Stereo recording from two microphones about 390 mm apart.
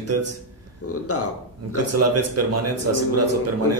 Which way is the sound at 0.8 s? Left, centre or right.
Left.